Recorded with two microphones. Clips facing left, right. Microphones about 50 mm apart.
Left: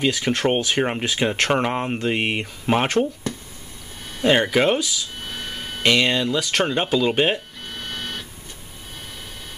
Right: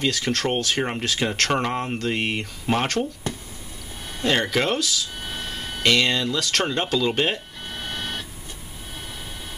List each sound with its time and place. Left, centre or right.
0.0 s speech: centre
4.2 s speech: centre
5.2 s speech: centre
5.5 s speech: centre
7.7 s printer: centre